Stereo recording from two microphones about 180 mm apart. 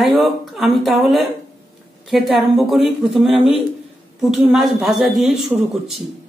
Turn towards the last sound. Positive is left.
turn(degrees=0)  # may be behind; listen again after turning